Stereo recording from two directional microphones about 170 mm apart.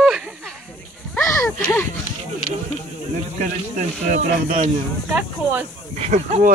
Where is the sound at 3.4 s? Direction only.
45° right (ahead or behind).